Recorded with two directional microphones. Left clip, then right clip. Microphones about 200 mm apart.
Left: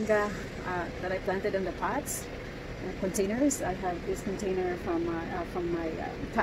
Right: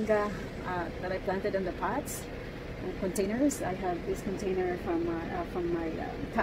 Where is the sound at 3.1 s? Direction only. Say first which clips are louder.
Left 1 dB; 15° left (ahead or behind).